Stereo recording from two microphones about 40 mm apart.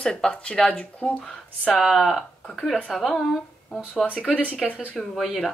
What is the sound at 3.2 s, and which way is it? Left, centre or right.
Speech, centre.